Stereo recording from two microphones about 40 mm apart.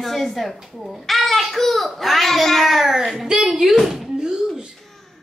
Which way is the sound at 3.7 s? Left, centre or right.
Centre.